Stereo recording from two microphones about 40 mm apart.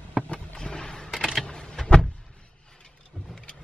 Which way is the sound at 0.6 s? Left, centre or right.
Centre.